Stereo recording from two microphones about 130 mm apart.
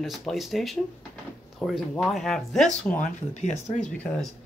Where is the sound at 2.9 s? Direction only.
65° left (ahead or behind).